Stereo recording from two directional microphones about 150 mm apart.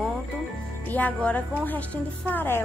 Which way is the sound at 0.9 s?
10° left (ahead or behind).